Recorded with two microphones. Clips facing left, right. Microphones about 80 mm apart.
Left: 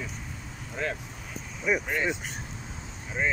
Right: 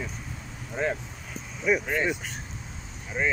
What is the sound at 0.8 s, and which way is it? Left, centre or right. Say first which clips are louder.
Speech: right 4 dB; right.